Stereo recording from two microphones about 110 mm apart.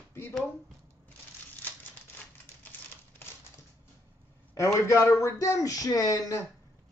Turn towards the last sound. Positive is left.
turn(degrees=35)  # may be behind; listen again after turning